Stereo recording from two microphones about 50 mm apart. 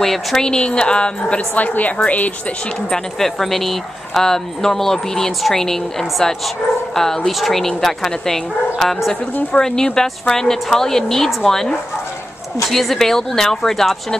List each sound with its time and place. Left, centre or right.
0.0 s speech: centre
0.5 s speech: centre
1.5 s a woman's voice: left
2.9 s speech: centre